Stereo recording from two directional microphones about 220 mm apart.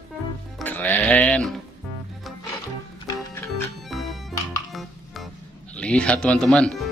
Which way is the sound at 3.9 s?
Centre (ahead or behind).